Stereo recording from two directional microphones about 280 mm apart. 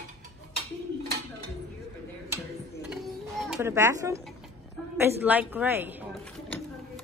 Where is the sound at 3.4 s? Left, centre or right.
Centre.